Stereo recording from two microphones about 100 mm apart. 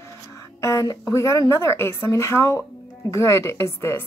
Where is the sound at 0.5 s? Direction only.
35° left (ahead or behind).